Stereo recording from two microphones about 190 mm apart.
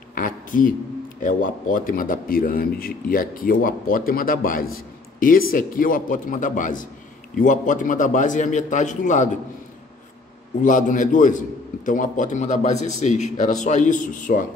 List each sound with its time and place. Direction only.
0.1 s a man's voice: 45° left (ahead or behind)
10.6 s a man's voice: 40° left (ahead or behind)